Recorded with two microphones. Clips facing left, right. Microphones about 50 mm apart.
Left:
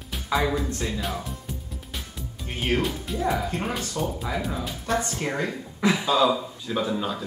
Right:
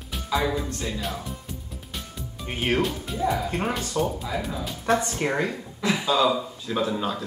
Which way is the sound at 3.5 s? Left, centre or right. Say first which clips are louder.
Right 2 dB; centre.